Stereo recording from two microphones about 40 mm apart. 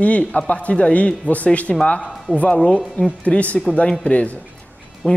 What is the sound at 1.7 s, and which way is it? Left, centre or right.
Speech, centre.